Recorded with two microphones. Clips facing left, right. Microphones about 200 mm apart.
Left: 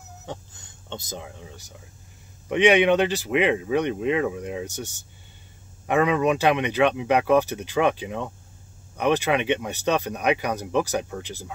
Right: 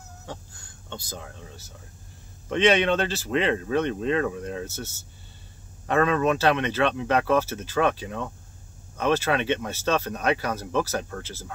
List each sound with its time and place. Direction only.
0.3 s speech: 20° left (ahead or behind)